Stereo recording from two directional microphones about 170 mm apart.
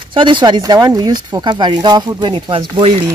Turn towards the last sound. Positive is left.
turn(degrees=-30)  # may be behind; listen again after turning